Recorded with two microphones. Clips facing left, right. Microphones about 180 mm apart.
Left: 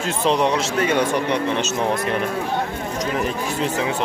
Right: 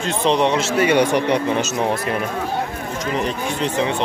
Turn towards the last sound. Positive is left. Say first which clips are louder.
# right 2 dB
turn(degrees=5)  # may be behind; listen again after turning